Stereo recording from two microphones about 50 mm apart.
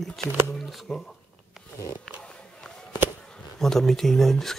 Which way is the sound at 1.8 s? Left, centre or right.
Left.